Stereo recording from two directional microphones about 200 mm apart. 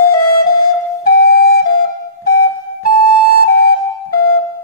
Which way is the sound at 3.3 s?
50° left (ahead or behind).